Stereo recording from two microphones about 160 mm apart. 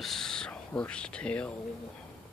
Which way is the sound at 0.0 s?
Centre (ahead or behind).